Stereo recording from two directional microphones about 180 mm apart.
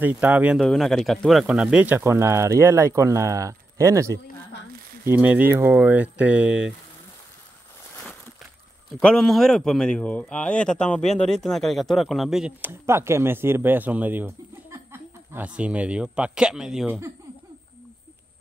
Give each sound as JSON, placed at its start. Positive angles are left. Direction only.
{"t": 0.0, "sound": "speech", "side_deg": -10}
{"t": 9.0, "sound": "speech", "side_deg": 5}